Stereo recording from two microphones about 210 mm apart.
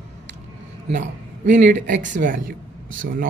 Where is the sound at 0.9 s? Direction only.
35° right (ahead or behind).